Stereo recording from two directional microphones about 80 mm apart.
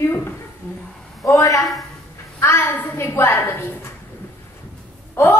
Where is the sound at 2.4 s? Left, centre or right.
Left.